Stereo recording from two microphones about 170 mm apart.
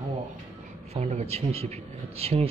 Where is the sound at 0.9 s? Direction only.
40° right (ahead or behind).